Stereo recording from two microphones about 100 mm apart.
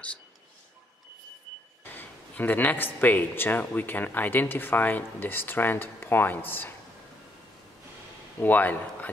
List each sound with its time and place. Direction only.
2.0 s speech: 15° left (ahead or behind)
8.4 s speech: 20° left (ahead or behind)